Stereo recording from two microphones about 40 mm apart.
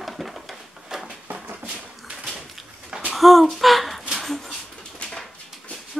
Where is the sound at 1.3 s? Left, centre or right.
Right.